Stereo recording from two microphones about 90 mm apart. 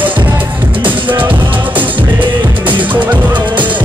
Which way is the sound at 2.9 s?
20° right (ahead or behind).